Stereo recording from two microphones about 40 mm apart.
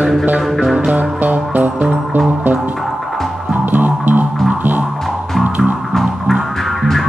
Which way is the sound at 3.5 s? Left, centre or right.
Right.